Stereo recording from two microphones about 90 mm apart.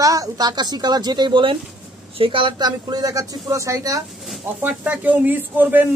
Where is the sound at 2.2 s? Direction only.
75° right (ahead or behind).